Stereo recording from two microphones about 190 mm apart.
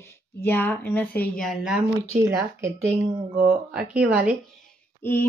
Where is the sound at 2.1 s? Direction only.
15° right (ahead or behind).